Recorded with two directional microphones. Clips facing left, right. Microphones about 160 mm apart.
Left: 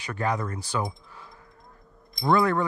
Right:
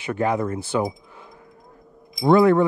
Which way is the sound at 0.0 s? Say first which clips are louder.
Right 6 dB; 20° right (ahead or behind).